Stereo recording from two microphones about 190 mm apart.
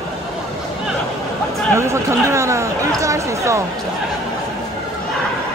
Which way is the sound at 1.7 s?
15° right (ahead or behind).